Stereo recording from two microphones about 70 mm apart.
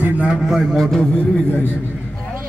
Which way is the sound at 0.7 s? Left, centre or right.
Centre.